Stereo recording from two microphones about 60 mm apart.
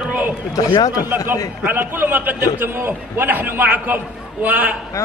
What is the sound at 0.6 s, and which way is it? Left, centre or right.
Speech, left.